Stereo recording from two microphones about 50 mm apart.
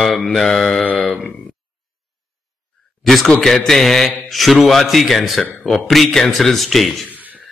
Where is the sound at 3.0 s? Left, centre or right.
Centre.